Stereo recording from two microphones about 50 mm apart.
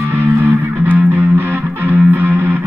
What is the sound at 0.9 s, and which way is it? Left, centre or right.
Music, right.